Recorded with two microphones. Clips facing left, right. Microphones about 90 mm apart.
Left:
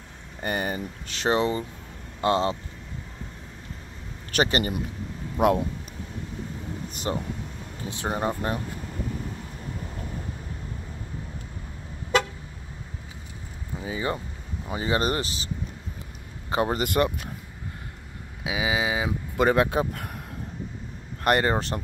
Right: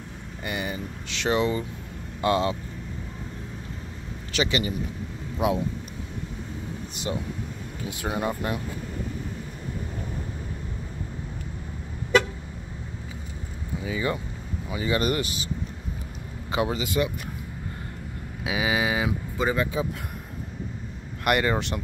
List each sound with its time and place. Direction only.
0.4 s speech: 40° left (ahead or behind)
4.3 s a man's voice: 45° left (ahead or behind)
7.1 s a man's voice: 45° left (ahead or behind)
7.9 s speech: 35° left (ahead or behind)
13.8 s speech: 30° left (ahead or behind)
16.4 s a man's voice: 40° left (ahead or behind); by 17.1 s 60° left (ahead or behind)
18.4 s speech: 15° left (ahead or behind)
19.3 s speech: 65° left (ahead or behind)
21.2 s speech: 35° left (ahead or behind)